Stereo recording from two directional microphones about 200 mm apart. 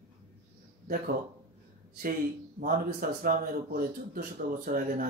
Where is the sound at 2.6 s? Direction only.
45° right (ahead or behind).